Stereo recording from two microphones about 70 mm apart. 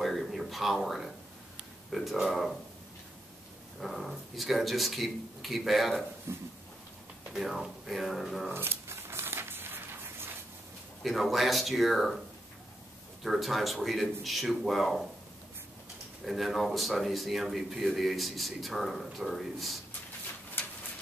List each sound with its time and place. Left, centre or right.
0.0 s a sound: centre
1.9 s speech: centre
3.8 s speech: centre
6.3 s a sound: right
7.3 s speech: centre
8.5 s a sound: right
11.0 s speech: centre
13.2 s speech: centre
16.3 s speech: centre